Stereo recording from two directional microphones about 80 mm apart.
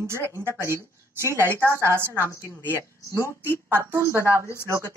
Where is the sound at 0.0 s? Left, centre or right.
Right.